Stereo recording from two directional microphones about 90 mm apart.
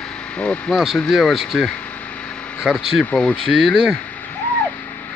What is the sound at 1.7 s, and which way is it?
Vehicle, 15° left (ahead or behind).